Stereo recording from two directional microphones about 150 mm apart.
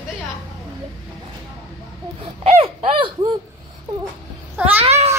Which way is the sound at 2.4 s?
45° right (ahead or behind).